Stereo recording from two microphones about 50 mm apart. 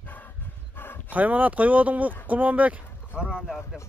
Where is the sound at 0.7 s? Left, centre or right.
Left.